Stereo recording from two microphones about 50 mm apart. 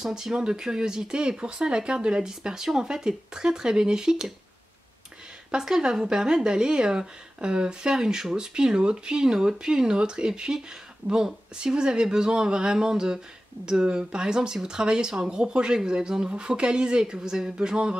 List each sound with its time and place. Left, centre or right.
0.0 s speech: centre
5.5 s speech: centre